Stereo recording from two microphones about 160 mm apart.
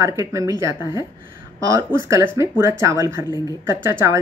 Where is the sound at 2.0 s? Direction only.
20° right (ahead or behind).